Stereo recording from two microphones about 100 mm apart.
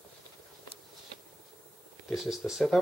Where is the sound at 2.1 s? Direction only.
5° right (ahead or behind).